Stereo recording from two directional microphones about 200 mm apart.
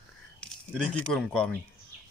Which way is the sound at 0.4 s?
5° left (ahead or behind).